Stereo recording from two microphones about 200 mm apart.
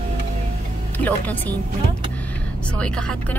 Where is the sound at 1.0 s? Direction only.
10° left (ahead or behind).